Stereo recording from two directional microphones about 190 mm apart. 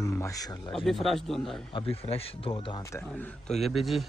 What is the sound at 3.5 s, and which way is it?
Speech, centre (ahead or behind).